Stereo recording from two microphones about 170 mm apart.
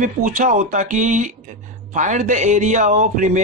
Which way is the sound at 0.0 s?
50° right (ahead or behind).